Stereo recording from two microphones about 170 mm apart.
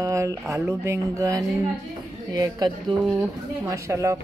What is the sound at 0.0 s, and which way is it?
Speech, 20° right (ahead or behind).